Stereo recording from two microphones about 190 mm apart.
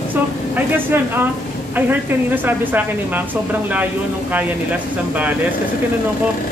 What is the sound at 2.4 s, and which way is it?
Speech, 10° right (ahead or behind).